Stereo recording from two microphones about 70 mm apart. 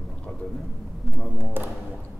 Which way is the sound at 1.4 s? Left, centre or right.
Right.